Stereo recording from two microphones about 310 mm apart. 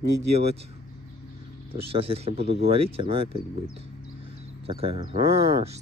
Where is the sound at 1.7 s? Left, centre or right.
Centre.